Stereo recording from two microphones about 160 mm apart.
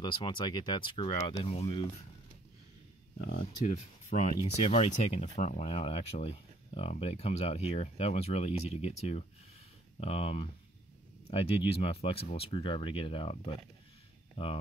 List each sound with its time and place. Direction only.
0.0 s speech: 30° left (ahead or behind)
3.3 s speech: 50° left (ahead or behind)